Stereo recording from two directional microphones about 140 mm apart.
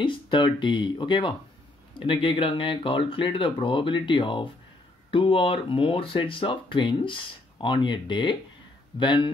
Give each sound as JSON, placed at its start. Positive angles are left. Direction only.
{"t": 0.0, "sound": "speech", "side_deg": 35}